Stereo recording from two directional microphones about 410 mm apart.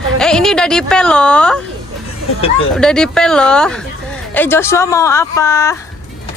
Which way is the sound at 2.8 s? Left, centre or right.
Centre.